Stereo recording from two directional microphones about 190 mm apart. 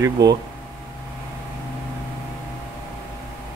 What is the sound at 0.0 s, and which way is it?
Speech, 20° right (ahead or behind).